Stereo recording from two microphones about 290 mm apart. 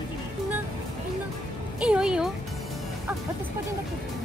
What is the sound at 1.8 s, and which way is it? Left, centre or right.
Music, centre.